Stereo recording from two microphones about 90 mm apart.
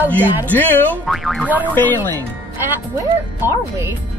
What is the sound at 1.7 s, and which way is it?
Speech, 20° left (ahead or behind).